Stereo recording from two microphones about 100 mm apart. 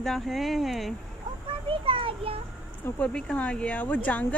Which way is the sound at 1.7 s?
60° right (ahead or behind).